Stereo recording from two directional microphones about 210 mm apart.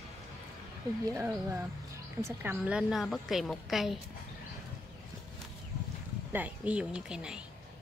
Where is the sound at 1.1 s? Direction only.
10° right (ahead or behind).